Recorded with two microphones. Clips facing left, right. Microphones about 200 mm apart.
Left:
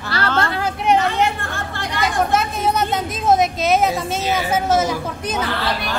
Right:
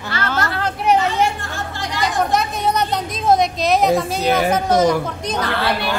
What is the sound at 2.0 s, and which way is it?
A woman's voice, centre (ahead or behind).